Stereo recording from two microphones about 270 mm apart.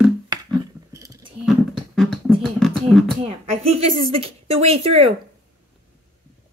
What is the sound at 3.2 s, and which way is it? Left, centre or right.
A woman's voice, right.